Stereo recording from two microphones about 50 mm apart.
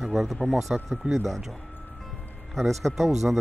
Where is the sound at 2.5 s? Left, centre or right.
Centre.